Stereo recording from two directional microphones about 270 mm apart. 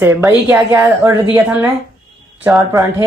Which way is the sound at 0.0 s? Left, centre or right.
Centre.